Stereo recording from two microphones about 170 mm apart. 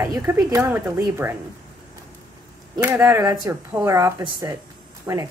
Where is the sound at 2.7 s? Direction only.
15° right (ahead or behind).